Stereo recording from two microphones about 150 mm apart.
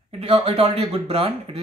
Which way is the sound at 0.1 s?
40° right (ahead or behind).